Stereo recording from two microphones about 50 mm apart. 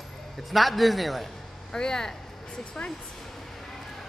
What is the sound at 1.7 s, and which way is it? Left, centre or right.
Speech, centre.